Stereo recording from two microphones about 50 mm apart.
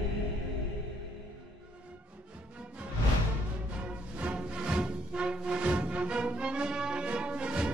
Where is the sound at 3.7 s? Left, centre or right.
Right.